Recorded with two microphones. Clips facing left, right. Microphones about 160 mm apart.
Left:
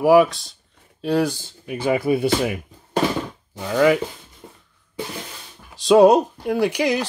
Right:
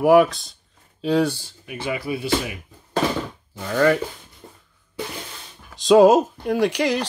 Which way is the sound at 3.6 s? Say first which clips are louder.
Left 2 dB; 10° left (ahead or behind).